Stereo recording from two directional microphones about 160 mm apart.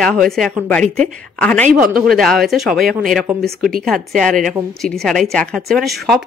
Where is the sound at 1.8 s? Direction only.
5° right (ahead or behind).